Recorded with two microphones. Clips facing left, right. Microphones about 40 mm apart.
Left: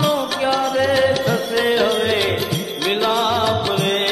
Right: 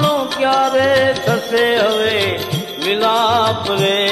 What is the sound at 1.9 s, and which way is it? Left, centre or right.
Music, right.